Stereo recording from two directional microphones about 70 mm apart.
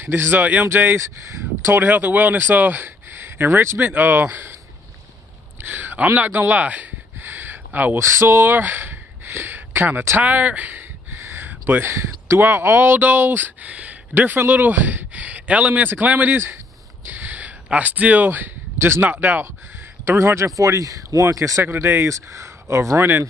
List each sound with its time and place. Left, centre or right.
0.0 s speech: right
0.9 s speech: right
5.6 s a sound: right
8.0 s speech: right
11.2 s a sound: right
11.9 s speech: right
17.0 s a sound: right
19.0 s speech: right
20.1 s speech: right
21.6 s speech: right